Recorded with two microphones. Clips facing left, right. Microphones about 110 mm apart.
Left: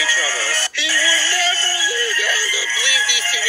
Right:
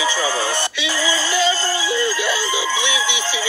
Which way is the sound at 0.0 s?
25° right (ahead or behind).